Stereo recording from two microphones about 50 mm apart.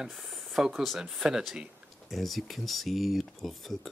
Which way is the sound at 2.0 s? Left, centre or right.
Centre.